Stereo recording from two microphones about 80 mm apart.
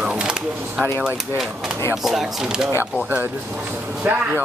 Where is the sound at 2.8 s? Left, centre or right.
Right.